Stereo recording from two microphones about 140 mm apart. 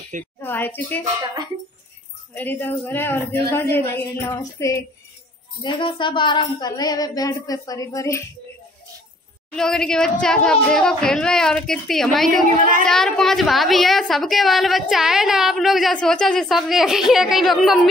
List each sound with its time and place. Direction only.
0.4 s speech: 15° left (ahead or behind)
1.2 s speech: 30° right (ahead or behind)
2.3 s speech: 15° left (ahead or behind)
5.6 s speech: 35° left (ahead or behind)
9.6 s a woman's voice: 5° left (ahead or behind)